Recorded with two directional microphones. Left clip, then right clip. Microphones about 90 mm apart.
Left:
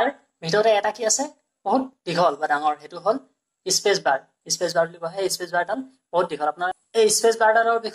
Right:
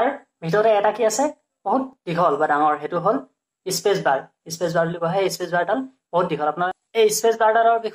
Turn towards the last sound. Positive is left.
turn(degrees=-5)  # may be behind; listen again after turning